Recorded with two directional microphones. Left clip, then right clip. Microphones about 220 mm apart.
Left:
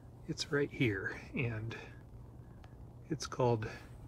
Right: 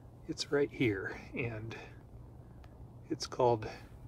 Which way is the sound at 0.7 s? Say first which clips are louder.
Right 2 dB; 10° right (ahead or behind).